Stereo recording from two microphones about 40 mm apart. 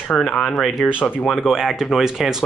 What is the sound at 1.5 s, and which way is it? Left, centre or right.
Speech, centre.